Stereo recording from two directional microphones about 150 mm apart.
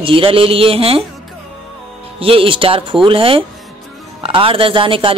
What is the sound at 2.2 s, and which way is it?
Speech, 40° right (ahead or behind).